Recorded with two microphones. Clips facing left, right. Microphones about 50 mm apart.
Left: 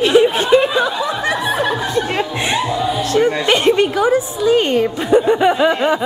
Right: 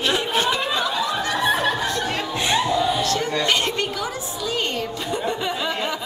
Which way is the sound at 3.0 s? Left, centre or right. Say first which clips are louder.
Left 7 dB; left.